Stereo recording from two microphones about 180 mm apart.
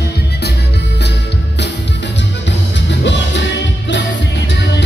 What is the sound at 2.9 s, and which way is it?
Music, 75° left (ahead or behind).